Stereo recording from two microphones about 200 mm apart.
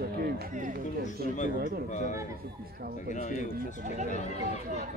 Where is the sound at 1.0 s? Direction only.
35° left (ahead or behind).